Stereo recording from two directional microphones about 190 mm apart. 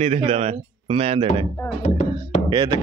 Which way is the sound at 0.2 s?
35° right (ahead or behind).